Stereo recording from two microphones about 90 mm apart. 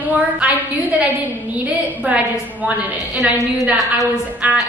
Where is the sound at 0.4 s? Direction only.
15° right (ahead or behind).